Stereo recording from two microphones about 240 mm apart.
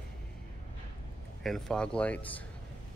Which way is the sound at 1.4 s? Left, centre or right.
Centre.